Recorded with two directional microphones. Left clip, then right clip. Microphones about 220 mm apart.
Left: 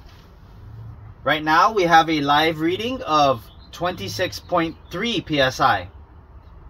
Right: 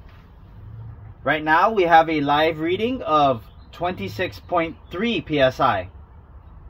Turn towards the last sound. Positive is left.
turn(degrees=-20)  # may be behind; listen again after turning